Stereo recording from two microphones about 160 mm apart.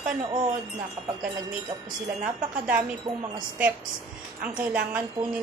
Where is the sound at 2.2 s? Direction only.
10° right (ahead or behind).